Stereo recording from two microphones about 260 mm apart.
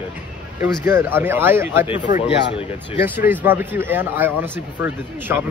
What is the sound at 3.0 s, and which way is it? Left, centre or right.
Speech, centre.